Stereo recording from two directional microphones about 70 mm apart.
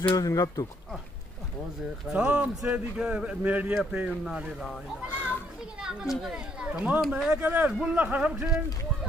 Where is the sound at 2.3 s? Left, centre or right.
Centre.